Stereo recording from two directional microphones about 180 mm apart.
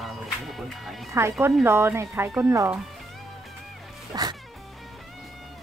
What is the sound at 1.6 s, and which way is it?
Speech, 15° right (ahead or behind).